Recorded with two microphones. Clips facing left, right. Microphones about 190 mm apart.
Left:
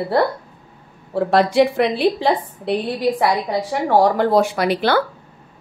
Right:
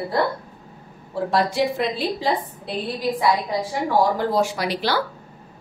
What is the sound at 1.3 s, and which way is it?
A woman's voice, 70° left (ahead or behind).